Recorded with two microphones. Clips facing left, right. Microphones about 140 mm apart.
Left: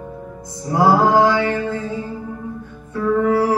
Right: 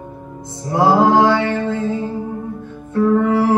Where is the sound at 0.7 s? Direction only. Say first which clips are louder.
Right 1 dB; 20° right (ahead or behind).